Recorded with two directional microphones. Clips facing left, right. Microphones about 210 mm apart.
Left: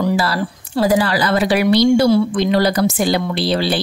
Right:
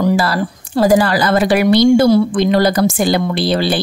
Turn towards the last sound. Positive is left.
turn(degrees=-50)  # may be behind; listen again after turning